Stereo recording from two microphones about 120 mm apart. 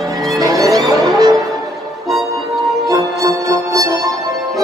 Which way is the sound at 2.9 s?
30° right (ahead or behind).